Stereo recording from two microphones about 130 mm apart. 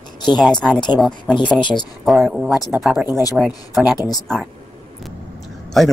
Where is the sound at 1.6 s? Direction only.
35° left (ahead or behind).